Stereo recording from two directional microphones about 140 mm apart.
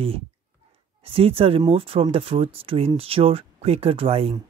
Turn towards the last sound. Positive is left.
turn(degrees=-45)  # may be behind; listen again after turning